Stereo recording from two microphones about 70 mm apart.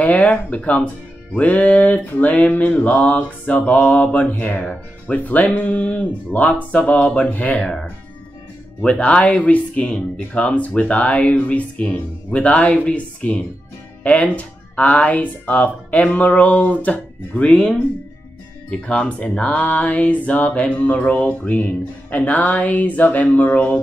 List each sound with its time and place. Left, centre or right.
0.0 s speech: centre
18.7 s speech: centre